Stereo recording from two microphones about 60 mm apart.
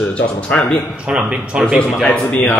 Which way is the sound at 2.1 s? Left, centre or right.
Left.